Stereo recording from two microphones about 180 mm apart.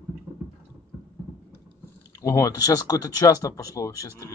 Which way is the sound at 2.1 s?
20° left (ahead or behind).